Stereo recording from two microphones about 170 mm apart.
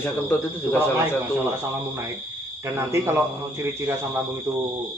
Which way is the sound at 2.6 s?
15° right (ahead or behind).